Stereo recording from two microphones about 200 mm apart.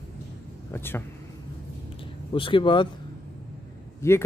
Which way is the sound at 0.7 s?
10° left (ahead or behind).